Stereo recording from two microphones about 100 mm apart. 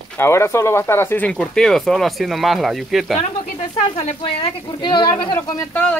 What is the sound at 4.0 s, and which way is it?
Speech, 60° left (ahead or behind).